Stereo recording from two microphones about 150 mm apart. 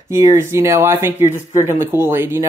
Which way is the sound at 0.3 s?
20° right (ahead or behind).